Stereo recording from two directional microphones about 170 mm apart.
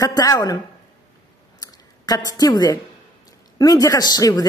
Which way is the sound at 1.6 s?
20° left (ahead or behind).